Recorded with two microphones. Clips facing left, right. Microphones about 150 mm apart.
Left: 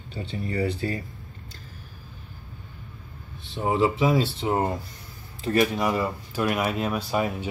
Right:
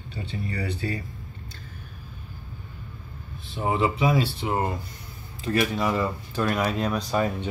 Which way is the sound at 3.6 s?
25° left (ahead or behind).